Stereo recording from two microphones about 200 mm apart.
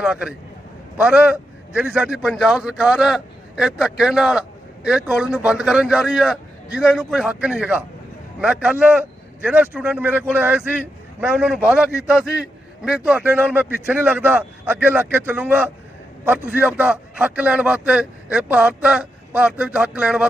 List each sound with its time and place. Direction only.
0.0 s a man's voice: 5° right (ahead or behind)
12.8 s a man's voice: 5° right (ahead or behind)